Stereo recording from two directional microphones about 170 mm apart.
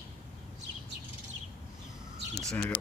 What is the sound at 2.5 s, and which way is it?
Speech, 5° left (ahead or behind).